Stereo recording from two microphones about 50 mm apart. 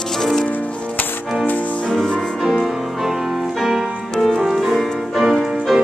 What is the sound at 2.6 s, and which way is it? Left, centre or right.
Music, centre.